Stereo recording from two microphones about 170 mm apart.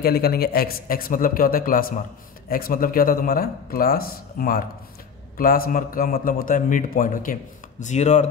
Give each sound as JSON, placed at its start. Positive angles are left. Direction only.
{"t": 0.0, "sound": "a man's voice", "side_deg": 65}